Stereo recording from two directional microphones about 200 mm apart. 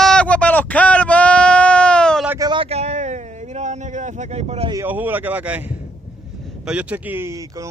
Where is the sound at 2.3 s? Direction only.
20° right (ahead or behind).